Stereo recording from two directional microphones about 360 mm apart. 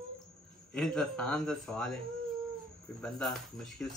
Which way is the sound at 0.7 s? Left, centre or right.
Centre.